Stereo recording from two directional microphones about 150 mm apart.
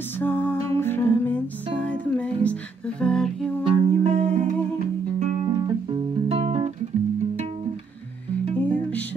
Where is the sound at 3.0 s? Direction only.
5° left (ahead or behind).